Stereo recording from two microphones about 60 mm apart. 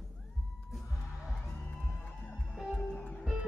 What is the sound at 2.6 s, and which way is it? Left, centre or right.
Music, left.